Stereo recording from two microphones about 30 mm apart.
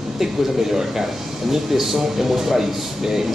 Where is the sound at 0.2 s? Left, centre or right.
Centre.